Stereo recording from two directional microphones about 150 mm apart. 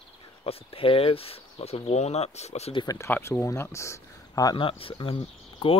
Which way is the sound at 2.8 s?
15° left (ahead or behind).